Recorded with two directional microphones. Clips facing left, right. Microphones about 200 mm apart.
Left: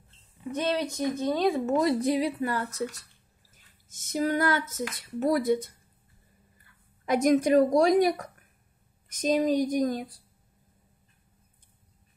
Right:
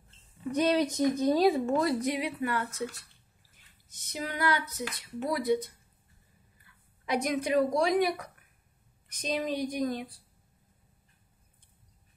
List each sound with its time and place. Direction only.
0.5 s speech: 15° right (ahead or behind)
1.7 s speech: 20° left (ahead or behind); by 10.1 s 40° left (ahead or behind)